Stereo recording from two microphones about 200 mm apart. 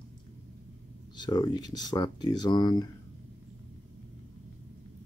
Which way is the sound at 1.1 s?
25° left (ahead or behind).